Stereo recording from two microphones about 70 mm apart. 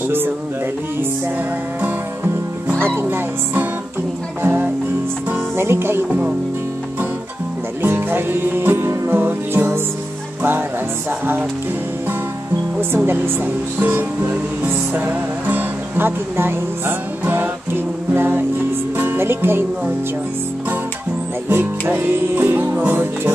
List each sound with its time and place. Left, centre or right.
3.0 s music: right
5.3 s speech: right
7.8 s music: right
11.1 s music: right
12.9 s speech: right
18.9 s music: right
21.5 s music: right